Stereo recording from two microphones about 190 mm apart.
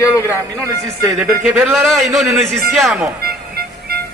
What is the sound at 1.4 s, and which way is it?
A man's voice, centre (ahead or behind).